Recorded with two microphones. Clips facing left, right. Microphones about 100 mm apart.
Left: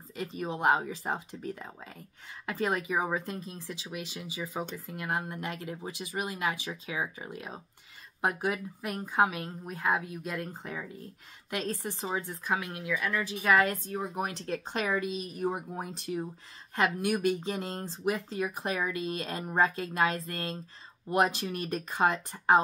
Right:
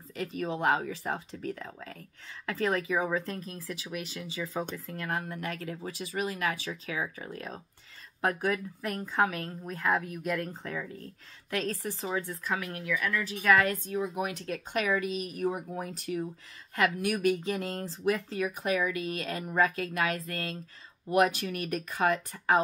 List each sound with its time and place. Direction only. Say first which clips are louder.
0.1 s speech: right 2 dB; 20° left (ahead or behind)
13.9 s speech: right 2 dB; 35° left (ahead or behind); by 18.5 s 20° left (ahead or behind)
18.6 s speech: right 2 dB; 30° left (ahead or behind)